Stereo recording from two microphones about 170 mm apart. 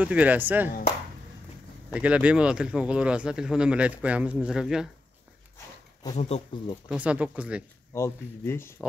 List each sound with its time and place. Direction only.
0.0 s speech: 10° right (ahead or behind)
1.9 s speech: 10° right (ahead or behind)
6.1 s speech: 35° left (ahead or behind)
6.9 s speech: 10° right (ahead or behind)
7.9 s speech: 15° left (ahead or behind)